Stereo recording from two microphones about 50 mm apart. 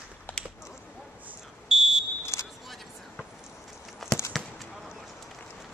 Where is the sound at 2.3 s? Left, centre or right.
Left.